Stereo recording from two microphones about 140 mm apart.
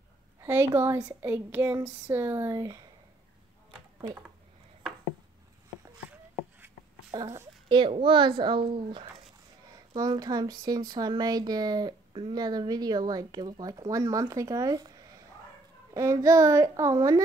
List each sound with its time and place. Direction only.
0.4 s a sound: 20° right (ahead or behind)
7.2 s speech: 30° right (ahead or behind)
15.9 s speech: 25° right (ahead or behind)